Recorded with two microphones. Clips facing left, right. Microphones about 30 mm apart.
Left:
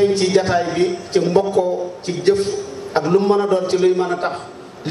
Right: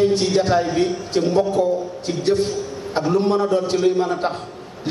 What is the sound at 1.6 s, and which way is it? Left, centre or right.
Speech, left.